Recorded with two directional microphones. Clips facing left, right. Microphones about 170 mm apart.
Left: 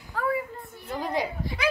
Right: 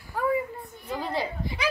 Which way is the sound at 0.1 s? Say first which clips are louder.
Right 2 dB; 15° right (ahead or behind).